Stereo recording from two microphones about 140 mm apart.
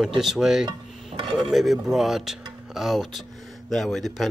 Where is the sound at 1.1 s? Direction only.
40° right (ahead or behind).